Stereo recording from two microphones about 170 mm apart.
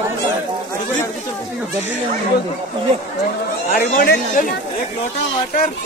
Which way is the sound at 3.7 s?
55° left (ahead or behind).